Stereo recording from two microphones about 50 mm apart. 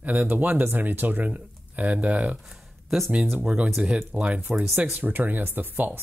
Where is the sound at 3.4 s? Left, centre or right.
Right.